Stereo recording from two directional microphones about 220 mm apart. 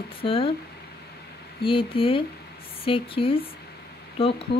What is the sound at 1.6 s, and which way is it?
Speech, 25° left (ahead or behind).